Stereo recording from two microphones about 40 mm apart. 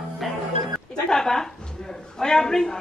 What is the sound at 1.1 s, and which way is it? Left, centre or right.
A man's voice, centre.